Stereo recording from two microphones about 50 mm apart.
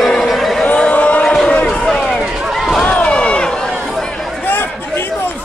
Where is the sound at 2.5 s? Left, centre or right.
Centre.